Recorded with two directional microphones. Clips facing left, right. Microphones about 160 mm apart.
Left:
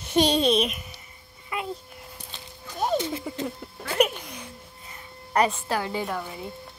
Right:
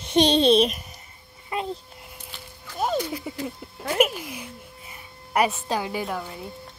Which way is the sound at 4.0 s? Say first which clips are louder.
Right 1 dB; 5° right (ahead or behind).